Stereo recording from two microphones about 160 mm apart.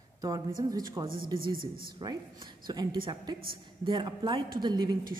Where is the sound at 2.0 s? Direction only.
25° right (ahead or behind).